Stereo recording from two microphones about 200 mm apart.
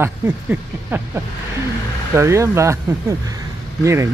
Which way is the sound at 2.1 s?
15° right (ahead or behind).